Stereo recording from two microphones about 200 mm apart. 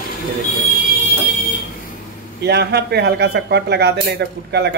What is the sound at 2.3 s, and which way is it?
A man's voice, 55° right (ahead or behind).